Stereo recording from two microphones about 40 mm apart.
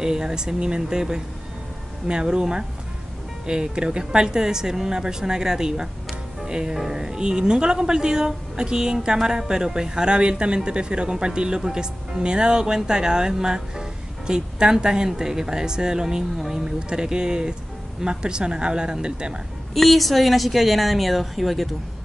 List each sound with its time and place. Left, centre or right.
0.0 s a woman's voice: centre
19.7 s speech: centre